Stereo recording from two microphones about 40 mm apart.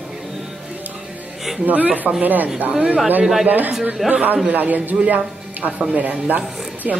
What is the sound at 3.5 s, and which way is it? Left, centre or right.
Speech, right.